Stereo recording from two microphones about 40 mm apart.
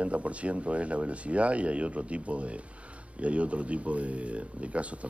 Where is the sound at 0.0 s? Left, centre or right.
Right.